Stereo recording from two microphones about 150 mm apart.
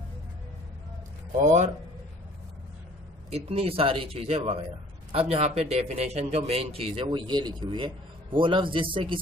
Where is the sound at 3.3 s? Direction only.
40° right (ahead or behind).